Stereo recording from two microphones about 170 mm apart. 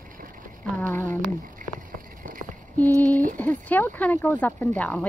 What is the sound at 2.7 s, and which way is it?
Speech, 10° left (ahead or behind).